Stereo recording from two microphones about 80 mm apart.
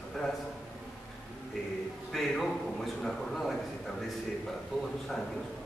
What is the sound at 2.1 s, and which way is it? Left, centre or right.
A man's voice, centre.